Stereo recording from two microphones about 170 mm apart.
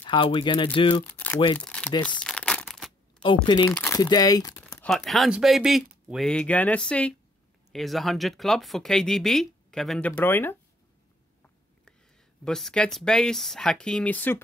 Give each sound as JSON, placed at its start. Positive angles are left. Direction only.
{"t": 0.0, "sound": "speech", "side_deg": 30}
{"t": 1.0, "sound": "speech", "side_deg": 10}
{"t": 2.0, "sound": "crumpling", "side_deg": 5}
{"t": 3.4, "sound": "speech", "side_deg": 25}
{"t": 3.7, "sound": "speech", "side_deg": 10}
{"t": 4.0, "sound": "speech", "side_deg": 20}
{"t": 4.8, "sound": "speech", "side_deg": 0}
{"t": 12.4, "sound": "speech", "side_deg": 5}